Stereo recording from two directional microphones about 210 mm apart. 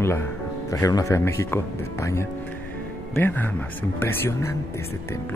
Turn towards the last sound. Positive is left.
turn(degrees=10)  # may be behind; listen again after turning